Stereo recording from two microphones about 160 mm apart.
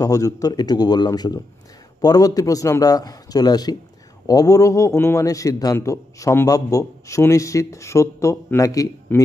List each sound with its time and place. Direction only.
0.0 s a man's voice: 20° left (ahead or behind)